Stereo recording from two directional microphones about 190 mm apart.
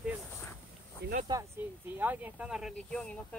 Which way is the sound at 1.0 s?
60° right (ahead or behind).